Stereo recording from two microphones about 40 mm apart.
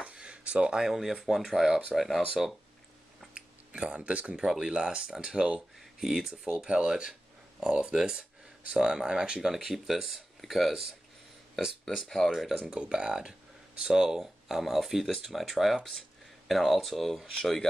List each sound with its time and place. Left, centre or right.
0.0 s a sound: right
0.8 s speech: centre
3.3 s a sound: right
4.6 s speech: right
6.4 s speech: right
9.4 s speech: centre
11.9 s speech: centre
12.7 s speech: right; by 17.6 s centre